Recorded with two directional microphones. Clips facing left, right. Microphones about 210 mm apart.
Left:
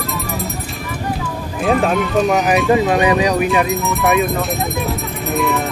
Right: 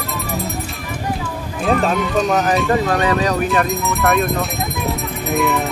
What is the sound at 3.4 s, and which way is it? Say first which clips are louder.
Speech: left 2 dB; centre (ahead or behind).